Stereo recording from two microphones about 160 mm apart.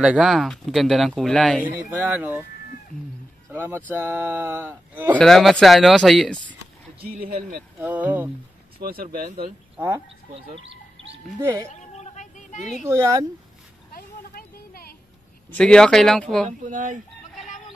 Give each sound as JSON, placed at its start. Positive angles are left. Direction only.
{"t": 0.0, "sound": "speech", "side_deg": -5}
{"t": 1.7, "sound": "speech", "side_deg": -10}
{"t": 3.5, "sound": "speech", "side_deg": -15}
{"t": 5.2, "sound": "speech", "side_deg": 5}
{"t": 7.0, "sound": "speech", "side_deg": -70}
{"t": 7.8, "sound": "speech", "side_deg": -10}
{"t": 8.8, "sound": "speech", "side_deg": -65}
{"t": 9.8, "sound": "speech", "side_deg": -20}
{"t": 11.7, "sound": "a sound", "side_deg": 45}
{"t": 12.8, "sound": "speech", "side_deg": -20}
{"t": 13.9, "sound": "a sound", "side_deg": 70}
{"t": 15.5, "sound": "speech", "side_deg": 5}
{"t": 16.4, "sound": "speech", "side_deg": -50}